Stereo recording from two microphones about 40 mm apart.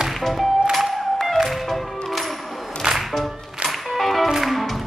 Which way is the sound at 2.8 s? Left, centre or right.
Centre.